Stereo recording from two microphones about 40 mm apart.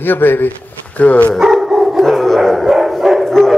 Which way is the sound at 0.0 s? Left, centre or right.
Left.